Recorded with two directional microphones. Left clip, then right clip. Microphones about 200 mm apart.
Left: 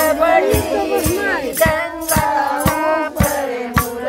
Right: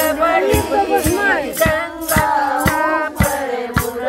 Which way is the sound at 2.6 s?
Centre (ahead or behind).